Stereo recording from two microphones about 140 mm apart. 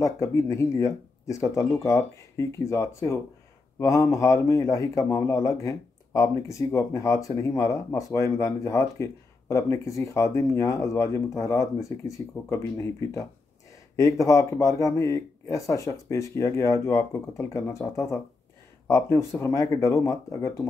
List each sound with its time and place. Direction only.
0.0 s a man's voice: 20° left (ahead or behind)